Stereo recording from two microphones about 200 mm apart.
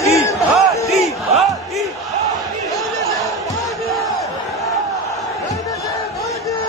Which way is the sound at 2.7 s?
Centre (ahead or behind).